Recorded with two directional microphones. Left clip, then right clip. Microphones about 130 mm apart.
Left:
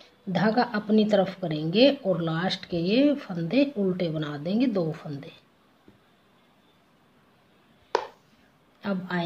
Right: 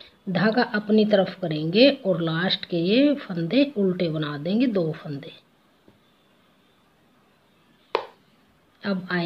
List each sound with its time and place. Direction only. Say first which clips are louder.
0.0 s a woman's voice: right 2 dB; 25° right (ahead or behind)
8.8 s a woman's voice: right 3 dB; 25° right (ahead or behind)